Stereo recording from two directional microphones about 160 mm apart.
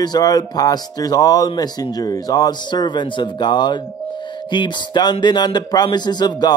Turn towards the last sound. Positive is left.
turn(degrees=25)  # may be behind; listen again after turning